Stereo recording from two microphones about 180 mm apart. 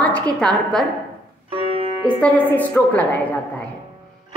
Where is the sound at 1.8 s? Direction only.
30° left (ahead or behind).